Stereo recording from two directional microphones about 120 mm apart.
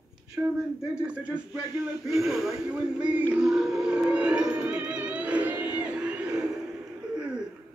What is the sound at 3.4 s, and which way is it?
Music, centre (ahead or behind).